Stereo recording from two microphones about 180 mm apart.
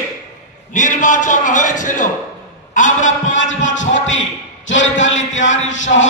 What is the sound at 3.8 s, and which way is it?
A man's voice, 90° left.